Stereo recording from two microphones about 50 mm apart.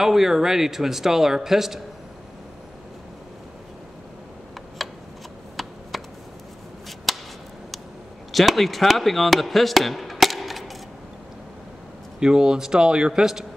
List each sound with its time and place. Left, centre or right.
0.0 s a man's voice: centre
4.8 s a sound: centre
7.1 s whip: centre
8.3 s speech: centre
10.1 s chop: centre
12.2 s a man's voice: centre